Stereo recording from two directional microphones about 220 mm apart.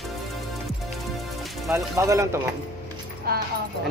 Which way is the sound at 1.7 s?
15° right (ahead or behind).